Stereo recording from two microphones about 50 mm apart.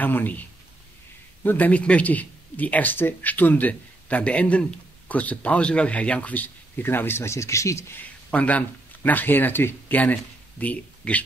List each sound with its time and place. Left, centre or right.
0.0 s a man's voice: left
1.7 s a man's voice: left
6.9 s speech: left
7.2 s speech: left
8.3 s speech: left